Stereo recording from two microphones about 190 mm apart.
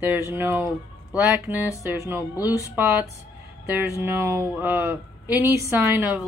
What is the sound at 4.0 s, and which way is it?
Speech, 15° right (ahead or behind).